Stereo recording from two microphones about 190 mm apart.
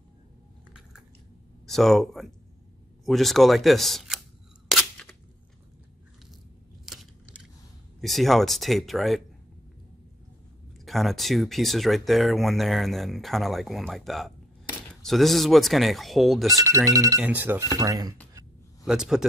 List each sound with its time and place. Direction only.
1.7 s speech: centre (ahead or behind)
4.6 s a sound: centre (ahead or behind)
6.9 s a sound: centre (ahead or behind)
8.0 s speech: centre (ahead or behind)
10.9 s speech: centre (ahead or behind)
16.9 s speech: 15° right (ahead or behind)
18.9 s speech: 5° right (ahead or behind)